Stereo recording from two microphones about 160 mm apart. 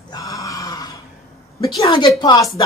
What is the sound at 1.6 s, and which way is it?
Speech, 30° left (ahead or behind).